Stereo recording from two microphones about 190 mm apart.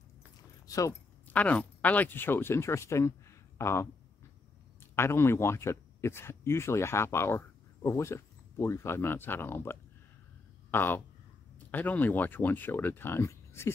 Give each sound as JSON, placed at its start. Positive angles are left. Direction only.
{"t": 0.7, "sound": "speech", "side_deg": 15}
{"t": 4.9, "sound": "speech", "side_deg": 15}